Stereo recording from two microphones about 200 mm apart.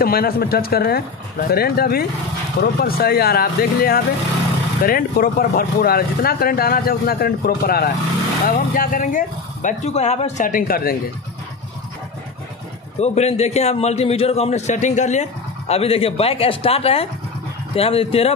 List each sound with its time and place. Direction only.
0.0 s a man's voice: 50° left (ahead or behind)
13.0 s a man's voice: 35° left (ahead or behind)